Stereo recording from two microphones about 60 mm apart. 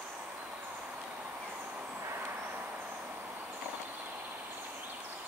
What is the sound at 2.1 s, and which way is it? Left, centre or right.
Vehicle, right.